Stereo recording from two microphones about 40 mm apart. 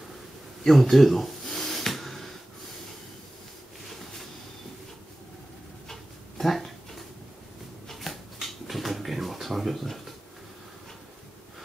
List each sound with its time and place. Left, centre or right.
0.7 s snort: centre
5.9 s dog: centre
7.9 s a sound: centre